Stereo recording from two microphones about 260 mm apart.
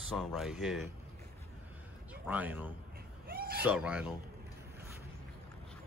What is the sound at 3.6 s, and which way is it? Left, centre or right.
Speech, centre.